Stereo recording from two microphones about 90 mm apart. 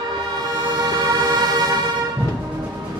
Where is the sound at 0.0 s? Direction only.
45° right (ahead or behind).